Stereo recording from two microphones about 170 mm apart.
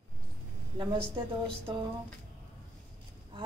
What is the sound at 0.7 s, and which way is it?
Speech, 30° right (ahead or behind).